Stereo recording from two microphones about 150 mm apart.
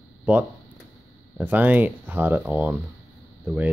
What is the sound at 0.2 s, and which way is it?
Speech, 10° right (ahead or behind).